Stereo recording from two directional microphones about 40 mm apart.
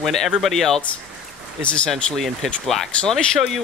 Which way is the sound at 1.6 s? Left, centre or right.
Left.